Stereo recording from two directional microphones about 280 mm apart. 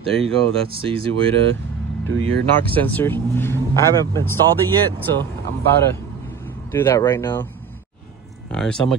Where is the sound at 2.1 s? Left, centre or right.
Right.